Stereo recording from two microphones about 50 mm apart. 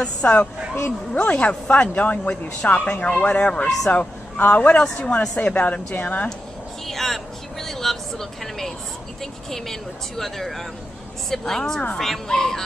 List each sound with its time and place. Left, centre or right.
0.0 s speech: left
4.8 s a woman's voice: centre
6.9 s vehicle: centre
7.6 s a sound: centre
9.2 s speech: centre